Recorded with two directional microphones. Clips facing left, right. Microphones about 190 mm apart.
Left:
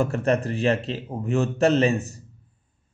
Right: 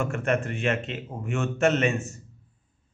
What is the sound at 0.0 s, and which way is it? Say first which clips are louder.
A man's voice: left 4 dB; 35° left (ahead or behind).